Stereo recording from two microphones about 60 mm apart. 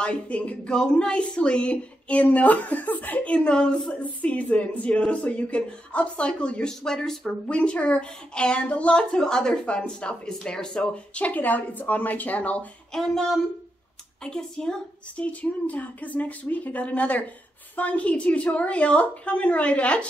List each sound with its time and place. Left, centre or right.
0.0 s a woman's voice: centre
4.0 s a woman's voice: left
12.9 s a woman's voice: centre
15.1 s speech: left